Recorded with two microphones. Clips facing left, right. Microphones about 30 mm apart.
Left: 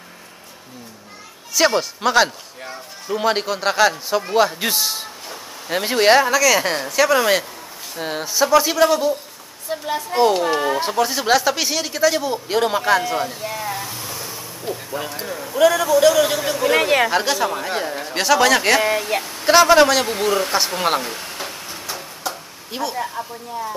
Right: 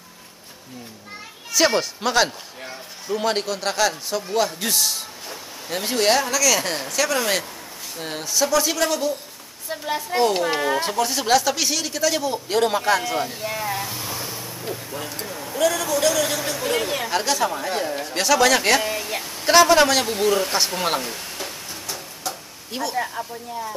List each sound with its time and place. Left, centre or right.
1.5 s speech: centre
9.7 s speech: centre
15.0 s speech: centre
18.8 s speech: left
19.4 s speech: centre
20.1 s a sound: centre
22.8 s speech: centre